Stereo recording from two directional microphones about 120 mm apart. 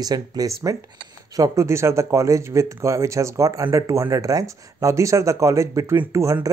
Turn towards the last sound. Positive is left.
turn(degrees=-25)  # may be behind; listen again after turning